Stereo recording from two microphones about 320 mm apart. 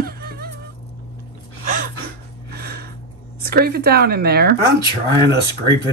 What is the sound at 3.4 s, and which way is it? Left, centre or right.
A woman's voice, right.